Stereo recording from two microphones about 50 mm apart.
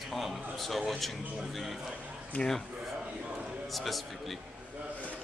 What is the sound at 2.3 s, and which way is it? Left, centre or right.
Speech, left.